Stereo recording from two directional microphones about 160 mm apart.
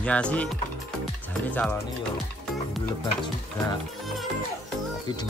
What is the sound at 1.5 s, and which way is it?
Speech, 10° left (ahead or behind).